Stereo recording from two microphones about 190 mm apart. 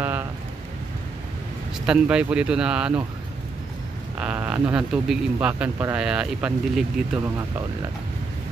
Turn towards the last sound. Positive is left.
turn(degrees=-5)  # may be behind; listen again after turning